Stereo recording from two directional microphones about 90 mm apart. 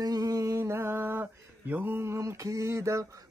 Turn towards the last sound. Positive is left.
turn(degrees=-35)  # may be behind; listen again after turning